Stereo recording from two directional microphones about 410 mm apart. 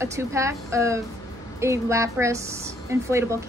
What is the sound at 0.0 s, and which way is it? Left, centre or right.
A woman's voice, centre.